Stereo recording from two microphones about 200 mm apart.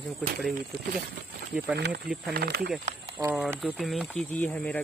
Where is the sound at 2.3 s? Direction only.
50° right (ahead or behind).